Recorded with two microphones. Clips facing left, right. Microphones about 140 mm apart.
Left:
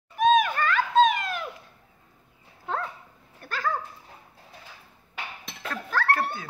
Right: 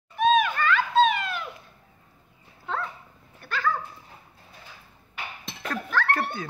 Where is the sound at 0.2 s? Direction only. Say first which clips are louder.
Left 1 dB; 45° left (ahead or behind).